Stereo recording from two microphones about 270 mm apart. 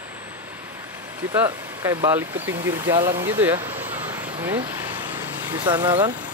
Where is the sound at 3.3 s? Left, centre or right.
Centre.